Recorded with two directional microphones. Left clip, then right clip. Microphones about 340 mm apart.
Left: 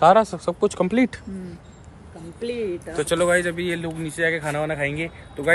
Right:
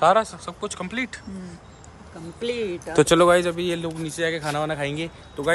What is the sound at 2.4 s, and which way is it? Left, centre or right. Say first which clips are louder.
Speech: even; right.